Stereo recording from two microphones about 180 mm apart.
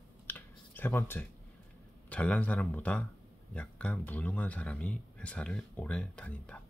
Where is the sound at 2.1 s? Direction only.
5° left (ahead or behind).